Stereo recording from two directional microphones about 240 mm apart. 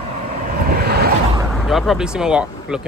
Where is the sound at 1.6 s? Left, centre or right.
Centre.